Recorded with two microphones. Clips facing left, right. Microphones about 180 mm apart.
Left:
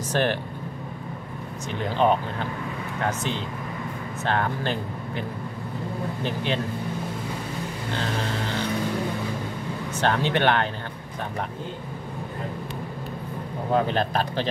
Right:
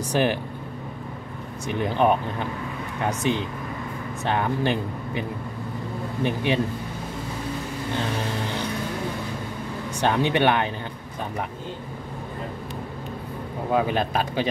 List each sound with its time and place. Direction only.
0.1 s speech: 15° right (ahead or behind)
1.8 s speech: 15° right (ahead or behind)
6.2 s speech: 15° right (ahead or behind)
9.9 s speech: 15° right (ahead or behind)
13.7 s speech: 10° right (ahead or behind)